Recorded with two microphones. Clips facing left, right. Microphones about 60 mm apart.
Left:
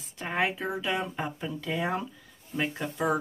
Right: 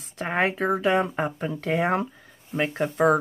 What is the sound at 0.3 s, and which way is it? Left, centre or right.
Speech, right.